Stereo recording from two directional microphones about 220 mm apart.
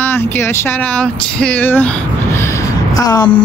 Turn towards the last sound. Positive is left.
turn(degrees=15)  # may be behind; listen again after turning